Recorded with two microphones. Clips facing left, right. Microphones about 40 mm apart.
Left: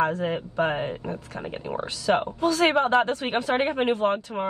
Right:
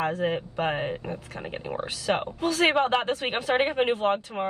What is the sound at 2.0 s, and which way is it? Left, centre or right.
A woman's voice, right.